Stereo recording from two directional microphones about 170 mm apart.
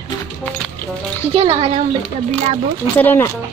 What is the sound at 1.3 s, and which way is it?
Speech, 35° right (ahead or behind).